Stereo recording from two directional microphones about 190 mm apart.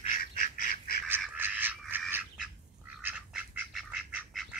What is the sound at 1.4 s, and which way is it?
Bird, 10° right (ahead or behind).